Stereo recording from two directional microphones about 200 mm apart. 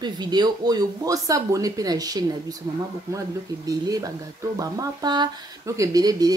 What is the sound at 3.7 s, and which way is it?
Speech, 15° right (ahead or behind).